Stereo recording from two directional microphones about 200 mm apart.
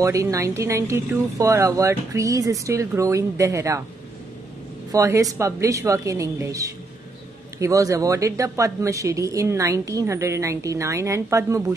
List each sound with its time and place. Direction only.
0.0 s speech: 15° right (ahead or behind)
4.9 s speech: 15° right (ahead or behind)